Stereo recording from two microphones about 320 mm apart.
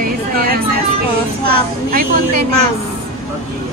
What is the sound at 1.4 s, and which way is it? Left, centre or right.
Speech, right.